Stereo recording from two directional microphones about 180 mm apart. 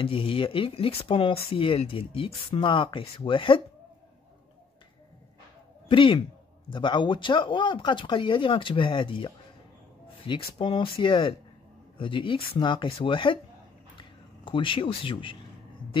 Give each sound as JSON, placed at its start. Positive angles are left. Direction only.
{"t": 0.0, "sound": "speech", "side_deg": 30}
{"t": 5.9, "sound": "speech", "side_deg": 25}
{"t": 13.9, "sound": "a sound", "side_deg": 30}